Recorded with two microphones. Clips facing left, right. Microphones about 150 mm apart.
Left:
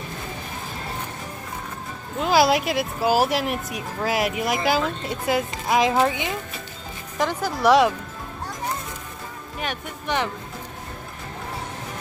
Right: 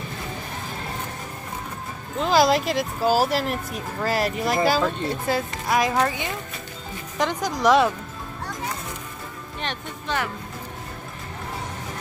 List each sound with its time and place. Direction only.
2.1 s speech: 5° left (ahead or behind)
7.2 s speech: 10° left (ahead or behind)
9.6 s speech: 10° left (ahead or behind)